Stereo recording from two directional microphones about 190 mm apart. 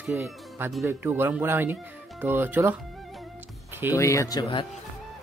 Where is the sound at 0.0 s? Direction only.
5° right (ahead or behind).